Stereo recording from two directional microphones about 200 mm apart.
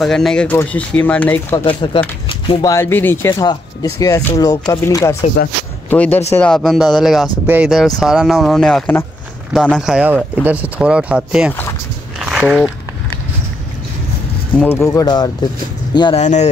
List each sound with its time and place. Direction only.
0.0 s speech: centre (ahead or behind)
1.6 s speech: 25° left (ahead or behind); by 11.5 s 5° right (ahead or behind)
12.2 s biting: 5° right (ahead or behind)
14.8 s speech: 15° left (ahead or behind)
16.2 s speech: 35° left (ahead or behind)